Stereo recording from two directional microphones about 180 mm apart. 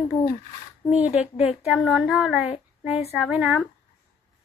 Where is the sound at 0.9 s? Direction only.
5° right (ahead or behind).